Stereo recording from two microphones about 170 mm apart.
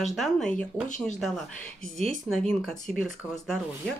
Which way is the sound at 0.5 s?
50° left (ahead or behind).